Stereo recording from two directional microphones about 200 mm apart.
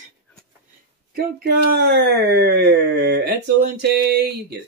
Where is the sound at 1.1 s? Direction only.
50° right (ahead or behind).